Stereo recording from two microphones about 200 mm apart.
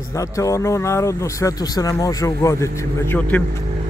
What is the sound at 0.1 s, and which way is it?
Speech, 15° left (ahead or behind).